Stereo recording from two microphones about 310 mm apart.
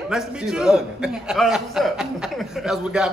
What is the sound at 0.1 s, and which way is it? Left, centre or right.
A man's voice, centre.